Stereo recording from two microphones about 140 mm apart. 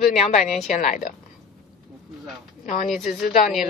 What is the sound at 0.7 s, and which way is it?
Speech, 60° left (ahead or behind).